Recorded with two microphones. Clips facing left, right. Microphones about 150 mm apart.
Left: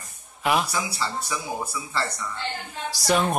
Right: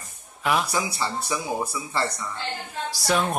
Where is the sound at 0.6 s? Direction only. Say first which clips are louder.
Right 2 dB; 15° right (ahead or behind).